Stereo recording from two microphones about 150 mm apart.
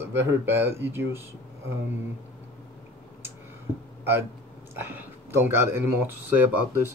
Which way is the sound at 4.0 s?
15° right (ahead or behind).